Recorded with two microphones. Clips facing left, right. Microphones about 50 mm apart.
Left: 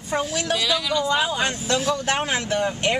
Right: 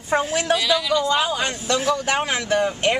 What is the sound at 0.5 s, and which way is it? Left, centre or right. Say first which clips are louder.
Speech: right 3 dB; centre.